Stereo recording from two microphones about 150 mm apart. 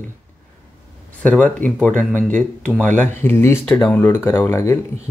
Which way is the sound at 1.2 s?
10° left (ahead or behind).